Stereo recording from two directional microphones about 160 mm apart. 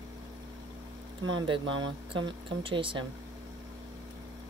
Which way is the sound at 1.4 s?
30° right (ahead or behind).